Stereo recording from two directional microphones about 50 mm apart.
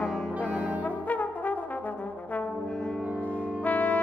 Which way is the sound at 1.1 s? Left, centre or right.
Left.